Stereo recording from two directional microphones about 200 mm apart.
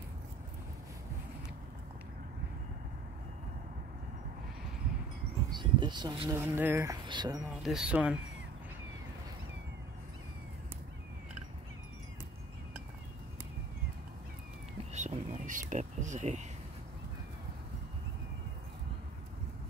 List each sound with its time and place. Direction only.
5.5 s speech: 25° right (ahead or behind)
7.6 s speech: 5° right (ahead or behind)
14.9 s a sound: 35° right (ahead or behind)